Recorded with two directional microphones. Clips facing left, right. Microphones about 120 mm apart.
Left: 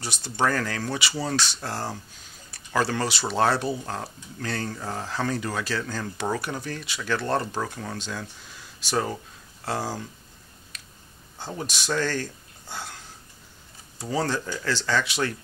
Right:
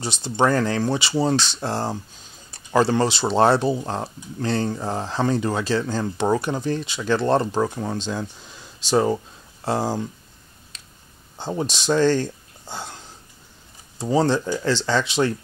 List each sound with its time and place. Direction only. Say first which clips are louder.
0.0 s speech: right 5 dB; 25° right (ahead or behind)
10.7 s a sound: left 1 dB; 25° right (ahead or behind)
11.3 s speech: right 7 dB; 25° right (ahead or behind)